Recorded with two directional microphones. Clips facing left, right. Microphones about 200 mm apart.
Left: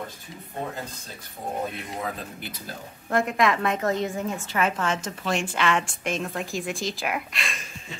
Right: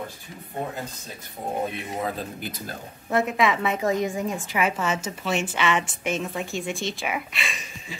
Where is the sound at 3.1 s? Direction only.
5° right (ahead or behind).